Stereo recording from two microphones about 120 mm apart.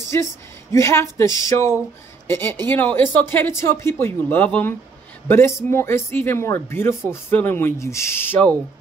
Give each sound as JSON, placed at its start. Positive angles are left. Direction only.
{"t": 0.1, "sound": "speech", "side_deg": 25}